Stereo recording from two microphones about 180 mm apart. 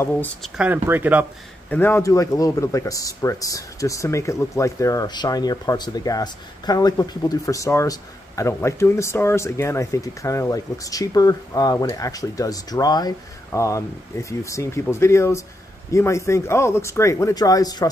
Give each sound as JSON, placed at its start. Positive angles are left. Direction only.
{"t": 0.4, "sound": "speech", "side_deg": -5}
{"t": 1.7, "sound": "speech", "side_deg": 10}